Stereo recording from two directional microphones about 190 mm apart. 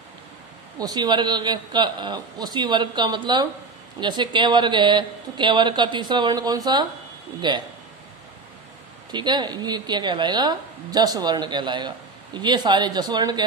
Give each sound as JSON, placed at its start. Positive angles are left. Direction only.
{"t": 0.7, "sound": "speech", "side_deg": -20}
{"t": 9.1, "sound": "speech", "side_deg": -20}